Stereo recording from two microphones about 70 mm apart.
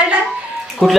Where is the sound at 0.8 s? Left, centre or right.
Centre.